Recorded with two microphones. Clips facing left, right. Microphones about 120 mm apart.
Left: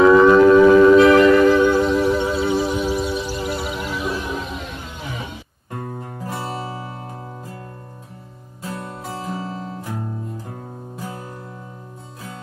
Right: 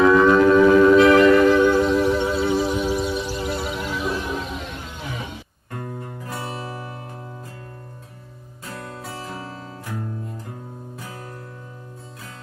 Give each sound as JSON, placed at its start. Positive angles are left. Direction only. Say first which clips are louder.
{"t": 0.2, "sound": "shofar", "louder": "left 4 dB", "side_deg": 5}
{"t": 6.2, "sound": "music", "louder": "left 4 dB", "side_deg": 30}